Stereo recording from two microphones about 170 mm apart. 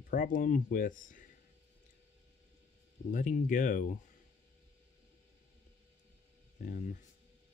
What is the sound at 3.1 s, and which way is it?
Speech, 50° left (ahead or behind).